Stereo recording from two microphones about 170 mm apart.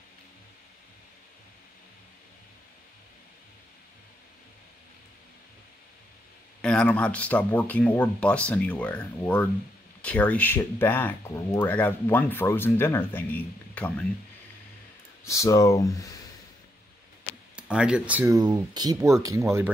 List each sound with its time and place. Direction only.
6.6 s speech: 5° left (ahead or behind)
15.2 s speech: 20° left (ahead or behind)
17.6 s speech: 5° right (ahead or behind)
18.3 s speech: 25° right (ahead or behind)